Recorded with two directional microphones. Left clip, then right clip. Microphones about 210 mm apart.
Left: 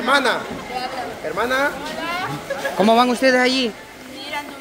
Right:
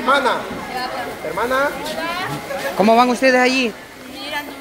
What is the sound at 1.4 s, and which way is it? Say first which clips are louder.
Speech: right 1 dB; 50° left (ahead or behind).